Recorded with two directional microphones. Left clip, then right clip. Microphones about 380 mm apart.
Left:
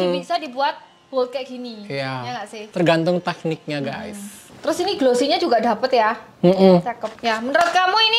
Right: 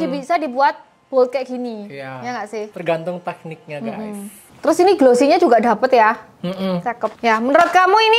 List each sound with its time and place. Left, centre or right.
0.2 s a woman's voice: right
1.9 s a woman's voice: left
2.2 s a woman's voice: right
2.7 s a woman's voice: centre
4.6 s a woman's voice: right
6.4 s speech: centre
6.8 s a woman's voice: right